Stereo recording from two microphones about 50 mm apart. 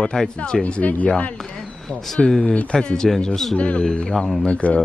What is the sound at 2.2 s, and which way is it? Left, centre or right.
A man's voice, centre.